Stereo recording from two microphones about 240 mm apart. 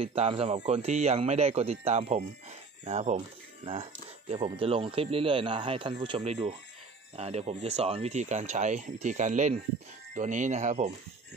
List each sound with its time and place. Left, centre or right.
0.0 s speech: right